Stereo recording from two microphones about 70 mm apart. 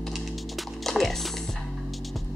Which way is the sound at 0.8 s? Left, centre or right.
Centre.